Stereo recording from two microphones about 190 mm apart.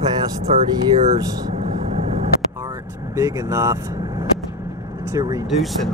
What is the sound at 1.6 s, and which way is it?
Vehicle, 35° right (ahead or behind).